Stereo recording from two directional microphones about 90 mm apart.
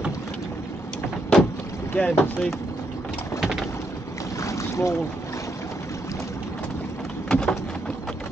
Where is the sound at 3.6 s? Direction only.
30° left (ahead or behind).